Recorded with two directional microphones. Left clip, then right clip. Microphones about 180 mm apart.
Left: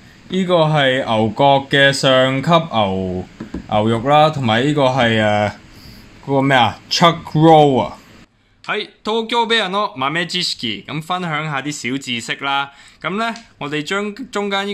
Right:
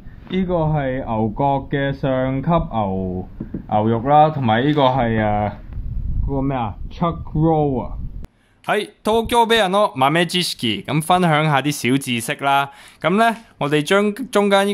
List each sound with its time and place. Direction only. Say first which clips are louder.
0.3 s speech: left 6 dB; 20° left (ahead or behind)
8.6 s speech: right 2 dB; 55° right (ahead or behind)